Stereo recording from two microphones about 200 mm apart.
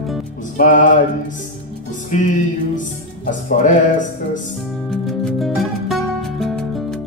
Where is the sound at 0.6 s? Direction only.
40° left (ahead or behind).